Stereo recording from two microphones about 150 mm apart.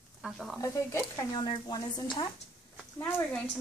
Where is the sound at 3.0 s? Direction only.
15° left (ahead or behind).